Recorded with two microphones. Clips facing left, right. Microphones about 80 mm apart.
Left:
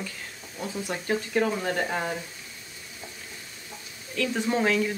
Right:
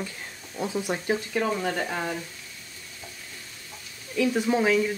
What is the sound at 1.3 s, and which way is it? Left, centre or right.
Speech, centre.